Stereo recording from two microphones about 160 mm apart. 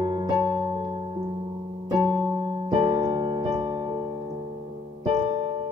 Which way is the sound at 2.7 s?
30° right (ahead or behind).